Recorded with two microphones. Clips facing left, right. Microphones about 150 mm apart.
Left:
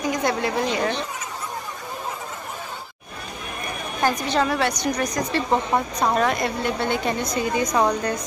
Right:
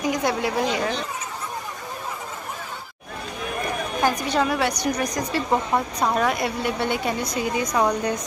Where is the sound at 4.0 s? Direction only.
10° right (ahead or behind).